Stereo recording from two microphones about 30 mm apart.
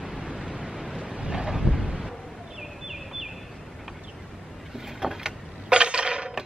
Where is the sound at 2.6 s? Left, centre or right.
Centre.